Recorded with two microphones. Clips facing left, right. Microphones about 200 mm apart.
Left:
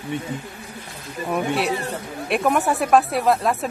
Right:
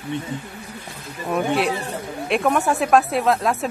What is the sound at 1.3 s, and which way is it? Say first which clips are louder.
Speech: right 2 dB; centre (ahead or behind).